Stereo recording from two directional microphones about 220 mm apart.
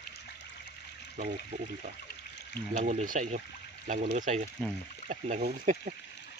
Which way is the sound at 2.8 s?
35° right (ahead or behind).